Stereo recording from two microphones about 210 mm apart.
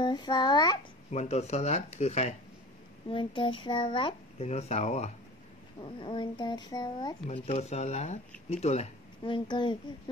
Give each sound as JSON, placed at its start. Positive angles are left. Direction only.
{"t": 0.0, "sound": "speech", "side_deg": 20}
{"t": 1.1, "sound": "speech", "side_deg": 30}
{"t": 7.4, "sound": "speech", "side_deg": 30}